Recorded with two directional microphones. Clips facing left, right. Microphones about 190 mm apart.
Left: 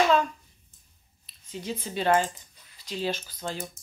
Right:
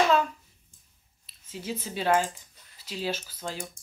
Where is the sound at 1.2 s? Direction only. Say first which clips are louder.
Left 1 dB; 5° right (ahead or behind).